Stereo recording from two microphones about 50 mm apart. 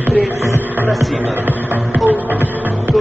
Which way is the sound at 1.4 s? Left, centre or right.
Right.